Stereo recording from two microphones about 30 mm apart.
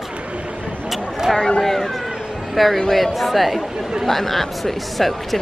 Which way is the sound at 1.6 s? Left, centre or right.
Centre.